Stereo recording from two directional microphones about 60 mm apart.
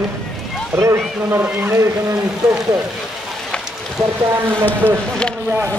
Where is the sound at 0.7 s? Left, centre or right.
Right.